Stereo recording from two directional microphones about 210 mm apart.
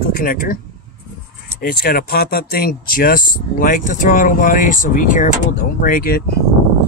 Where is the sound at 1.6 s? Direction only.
45° left (ahead or behind).